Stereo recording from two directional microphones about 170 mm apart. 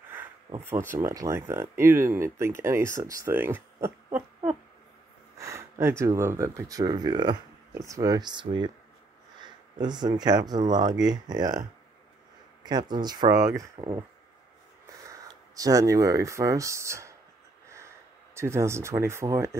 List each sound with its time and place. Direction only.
0.6 s speech: 15° right (ahead or behind)
5.4 s speech: 20° right (ahead or behind)
12.6 s speech: 25° right (ahead or behind)
15.0 s speech: 20° right (ahead or behind)
18.3 s speech: 15° right (ahead or behind)